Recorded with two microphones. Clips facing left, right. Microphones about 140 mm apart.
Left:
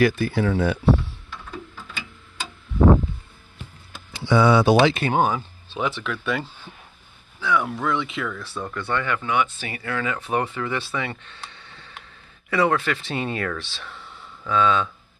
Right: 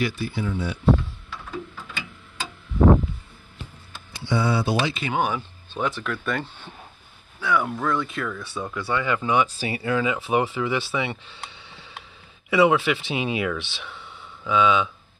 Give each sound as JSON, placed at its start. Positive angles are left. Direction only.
{"t": 0.0, "sound": "speech", "side_deg": 50}
{"t": 0.3, "sound": "speech", "side_deg": 70}
{"t": 4.2, "sound": "speech", "side_deg": 90}
{"t": 5.1, "sound": "speech", "side_deg": 35}
{"t": 5.8, "sound": "speech", "side_deg": 0}
{"t": 9.3, "sound": "speech", "side_deg": -30}
{"t": 9.7, "sound": "speech", "side_deg": -15}
{"t": 10.2, "sound": "speech", "side_deg": -5}
{"t": 11.0, "sound": "speech", "side_deg": -15}
{"t": 11.6, "sound": "tick", "side_deg": 0}
{"t": 12.4, "sound": "speech", "side_deg": -5}